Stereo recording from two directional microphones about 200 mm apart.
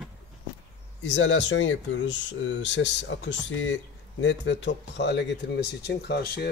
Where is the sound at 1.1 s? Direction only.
65° left (ahead or behind).